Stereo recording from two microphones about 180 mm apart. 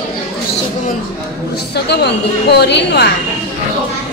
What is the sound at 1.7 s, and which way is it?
A woman's voice, 65° left (ahead or behind).